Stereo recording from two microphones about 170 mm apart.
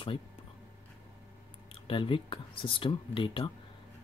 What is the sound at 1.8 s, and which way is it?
Speech, 30° left (ahead or behind).